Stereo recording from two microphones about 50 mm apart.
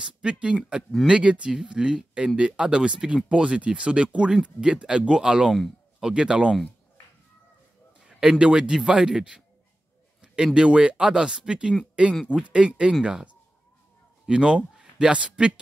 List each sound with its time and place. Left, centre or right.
0.0 s speech: right
8.4 s speech: right
8.7 s speech: centre